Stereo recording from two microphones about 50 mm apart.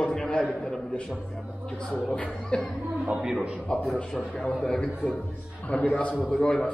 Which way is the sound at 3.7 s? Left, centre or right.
Centre.